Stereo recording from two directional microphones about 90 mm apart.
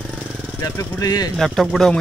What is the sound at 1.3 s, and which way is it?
Speech, 5° left (ahead or behind).